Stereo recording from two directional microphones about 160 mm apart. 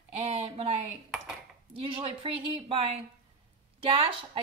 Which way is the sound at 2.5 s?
40° right (ahead or behind).